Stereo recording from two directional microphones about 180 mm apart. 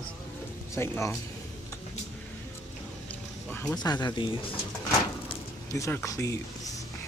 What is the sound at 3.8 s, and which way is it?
Speech, 20° left (ahead or behind).